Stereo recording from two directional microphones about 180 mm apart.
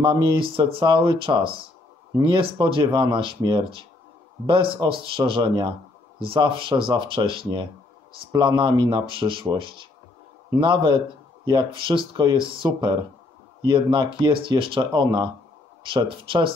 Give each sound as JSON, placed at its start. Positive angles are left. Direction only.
{"t": 0.0, "sound": "speech", "side_deg": -25}